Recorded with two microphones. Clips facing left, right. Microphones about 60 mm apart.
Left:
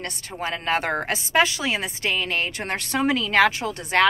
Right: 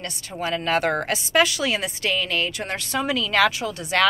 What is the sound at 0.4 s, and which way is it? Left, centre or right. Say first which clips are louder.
A woman's voice: right 2 dB; left.